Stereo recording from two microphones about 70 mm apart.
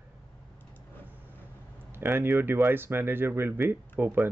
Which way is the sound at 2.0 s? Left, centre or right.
Right.